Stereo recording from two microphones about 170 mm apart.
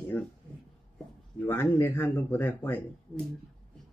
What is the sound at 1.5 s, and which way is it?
Speech, 10° left (ahead or behind).